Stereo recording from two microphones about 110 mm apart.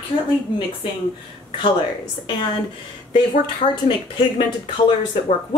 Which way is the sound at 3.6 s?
50° left (ahead or behind).